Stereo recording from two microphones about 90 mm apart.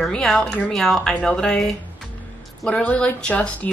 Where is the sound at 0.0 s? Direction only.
5° left (ahead or behind).